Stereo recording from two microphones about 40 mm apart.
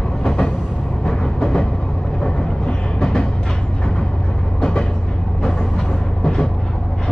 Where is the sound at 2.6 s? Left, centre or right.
Left.